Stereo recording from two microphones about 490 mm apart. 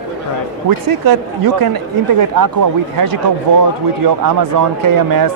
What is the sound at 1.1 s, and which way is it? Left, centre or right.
A man's voice, right.